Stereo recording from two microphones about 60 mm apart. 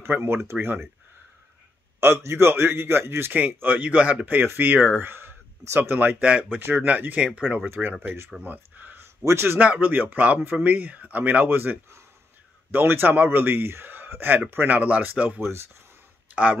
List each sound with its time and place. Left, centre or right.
0.0 s speech: right
2.0 s a man's voice: right
6.2 s speech: right
7.8 s speech: centre
8.4 s a man's voice: right
9.3 s speech: right
9.6 s a man's voice: right
14.7 s speech: right